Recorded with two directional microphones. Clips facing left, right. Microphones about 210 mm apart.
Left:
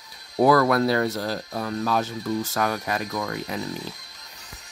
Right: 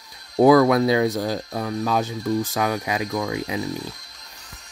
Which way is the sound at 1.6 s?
5° right (ahead or behind).